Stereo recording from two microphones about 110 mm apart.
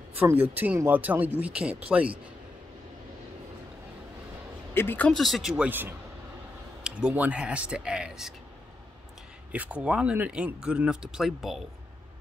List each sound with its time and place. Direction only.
0.1 s speech: 15° right (ahead or behind)
4.7 s speech: 15° left (ahead or behind)
5.1 s speech: centre (ahead or behind)
5.6 s speech: 20° right (ahead or behind)
9.5 s speech: 10° right (ahead or behind)